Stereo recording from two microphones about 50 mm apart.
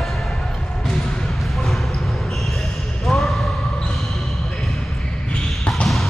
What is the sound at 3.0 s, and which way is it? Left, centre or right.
Basketball bounce, centre.